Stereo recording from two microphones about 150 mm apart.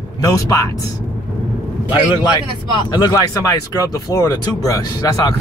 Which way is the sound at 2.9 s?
25° left (ahead or behind).